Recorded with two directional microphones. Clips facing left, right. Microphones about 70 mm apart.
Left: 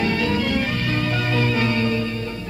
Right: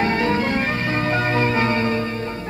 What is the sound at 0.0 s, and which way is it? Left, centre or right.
Music, right.